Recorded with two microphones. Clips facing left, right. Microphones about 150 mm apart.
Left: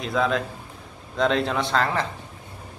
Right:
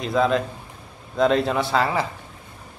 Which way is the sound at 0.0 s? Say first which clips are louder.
Right 3 dB; centre (ahead or behind).